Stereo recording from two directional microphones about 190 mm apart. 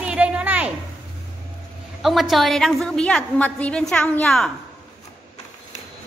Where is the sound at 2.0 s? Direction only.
Centre (ahead or behind).